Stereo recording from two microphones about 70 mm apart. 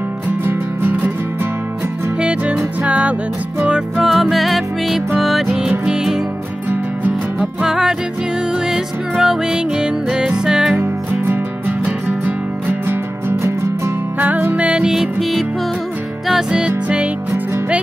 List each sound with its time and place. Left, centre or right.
0.5 s music: right
2.1 s music: centre
4.0 s music: centre
6.7 s music: right
7.6 s music: centre
10.8 s music: right
14.6 s music: centre